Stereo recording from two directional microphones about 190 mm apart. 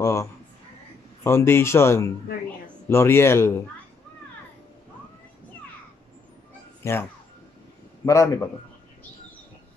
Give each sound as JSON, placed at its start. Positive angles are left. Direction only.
{"t": 0.0, "sound": "a sound", "side_deg": 15}
{"t": 1.2, "sound": "speech", "side_deg": 15}
{"t": 6.8, "sound": "a man's voice", "side_deg": 15}